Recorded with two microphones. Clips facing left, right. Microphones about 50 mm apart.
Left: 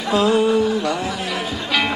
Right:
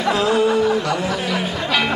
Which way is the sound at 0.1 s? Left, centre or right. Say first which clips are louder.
Left 2 dB; centre.